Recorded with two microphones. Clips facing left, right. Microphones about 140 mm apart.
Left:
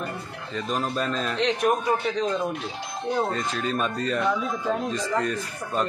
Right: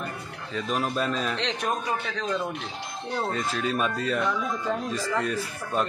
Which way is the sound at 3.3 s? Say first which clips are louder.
Even; centre (ahead or behind).